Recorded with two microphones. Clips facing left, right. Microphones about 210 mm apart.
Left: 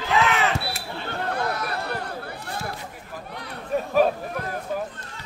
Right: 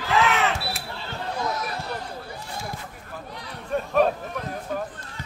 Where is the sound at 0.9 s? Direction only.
60° left (ahead or behind).